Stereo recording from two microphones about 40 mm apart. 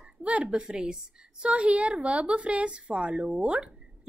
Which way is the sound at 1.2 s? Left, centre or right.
Right.